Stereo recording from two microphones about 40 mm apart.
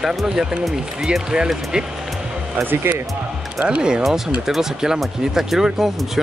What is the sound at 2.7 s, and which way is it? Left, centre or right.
Speech, right.